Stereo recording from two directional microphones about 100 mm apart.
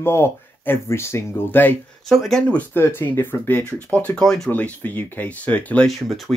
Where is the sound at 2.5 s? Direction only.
20° left (ahead or behind).